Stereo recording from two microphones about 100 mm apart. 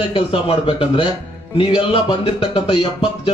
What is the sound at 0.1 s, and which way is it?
Speech, 65° left (ahead or behind).